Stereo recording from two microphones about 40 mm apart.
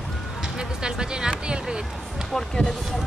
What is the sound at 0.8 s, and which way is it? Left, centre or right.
Speech, centre.